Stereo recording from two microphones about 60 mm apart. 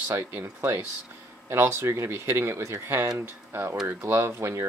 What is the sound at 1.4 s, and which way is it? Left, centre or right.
Speech, right.